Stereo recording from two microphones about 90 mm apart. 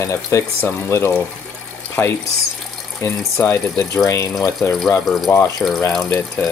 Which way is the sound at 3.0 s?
30° left (ahead or behind).